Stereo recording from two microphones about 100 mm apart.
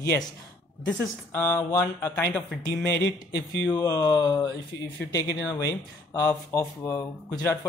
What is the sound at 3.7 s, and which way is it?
Speech, 35° left (ahead or behind).